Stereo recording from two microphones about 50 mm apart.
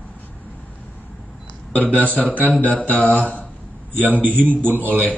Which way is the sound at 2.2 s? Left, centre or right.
Left.